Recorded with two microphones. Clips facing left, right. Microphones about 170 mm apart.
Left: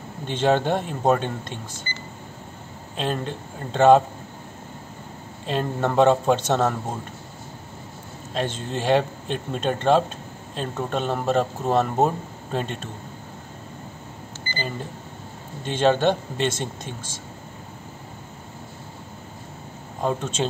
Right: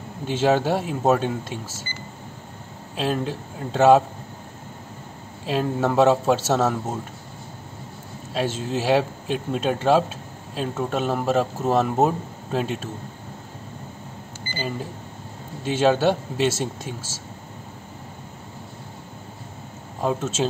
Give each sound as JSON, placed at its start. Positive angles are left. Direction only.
{"t": 0.3, "sound": "speech", "side_deg": -5}
{"t": 3.0, "sound": "speech", "side_deg": -5}
{"t": 5.5, "sound": "speech", "side_deg": -5}
{"t": 8.3, "sound": "speech", "side_deg": -5}
{"t": 14.5, "sound": "speech", "side_deg": -5}
{"t": 20.0, "sound": "speech", "side_deg": -5}